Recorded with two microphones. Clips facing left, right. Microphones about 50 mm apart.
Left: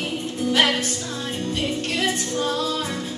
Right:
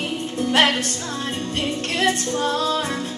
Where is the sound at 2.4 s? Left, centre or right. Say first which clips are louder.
Right 3 dB; right.